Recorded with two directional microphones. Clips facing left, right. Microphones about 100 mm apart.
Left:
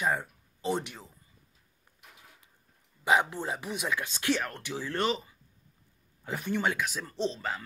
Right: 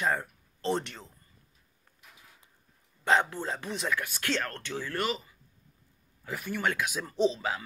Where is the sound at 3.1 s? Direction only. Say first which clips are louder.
Even; 15° left (ahead or behind).